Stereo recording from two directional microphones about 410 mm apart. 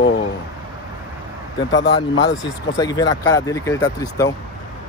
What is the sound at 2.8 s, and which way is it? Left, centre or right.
Speech, centre.